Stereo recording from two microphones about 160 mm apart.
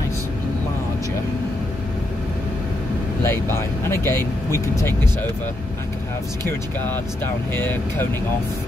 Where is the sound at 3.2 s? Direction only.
15° left (ahead or behind).